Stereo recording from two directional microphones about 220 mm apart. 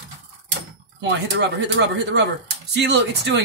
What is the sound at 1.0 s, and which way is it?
Speech, 55° right (ahead or behind).